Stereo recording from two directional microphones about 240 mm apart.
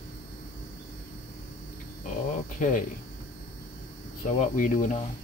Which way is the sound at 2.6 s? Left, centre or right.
Left.